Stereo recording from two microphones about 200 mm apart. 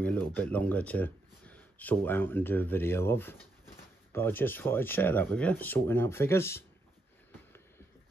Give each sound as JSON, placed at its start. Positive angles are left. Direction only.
{"t": 0.0, "sound": "speech", "side_deg": 10}